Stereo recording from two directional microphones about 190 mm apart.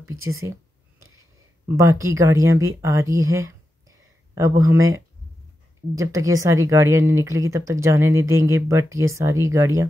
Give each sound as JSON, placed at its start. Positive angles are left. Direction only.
{"t": 0.3, "sound": "a sound", "side_deg": -15}
{"t": 1.8, "sound": "speech", "side_deg": -15}
{"t": 4.6, "sound": "speech", "side_deg": -15}